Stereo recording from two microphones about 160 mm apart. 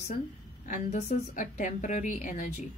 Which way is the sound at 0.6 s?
50° left (ahead or behind).